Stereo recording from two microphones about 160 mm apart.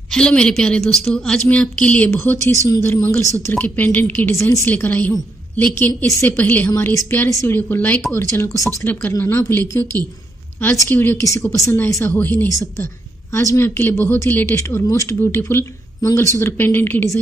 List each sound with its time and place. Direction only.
0.1 s a woman's voice: 5° left (ahead or behind)
2.4 s speech: 20° right (ahead or behind)
2.7 s a woman's voice: 15° left (ahead or behind)